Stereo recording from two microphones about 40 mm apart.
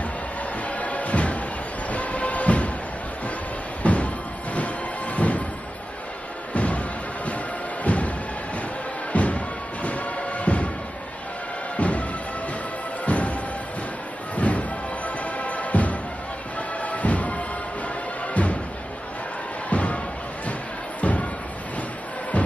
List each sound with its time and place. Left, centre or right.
0.7 s music: left
3.8 s music: left
6.5 s music: left
7.8 s music: left
9.1 s music: left
11.7 s music: left
13.0 s music: left
19.7 s music: left
21.0 s music: left